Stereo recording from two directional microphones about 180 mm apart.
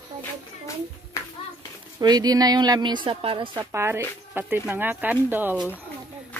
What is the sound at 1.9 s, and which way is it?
A woman's voice, 20° right (ahead or behind).